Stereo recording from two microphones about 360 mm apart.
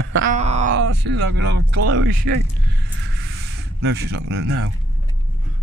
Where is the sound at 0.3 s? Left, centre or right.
Centre.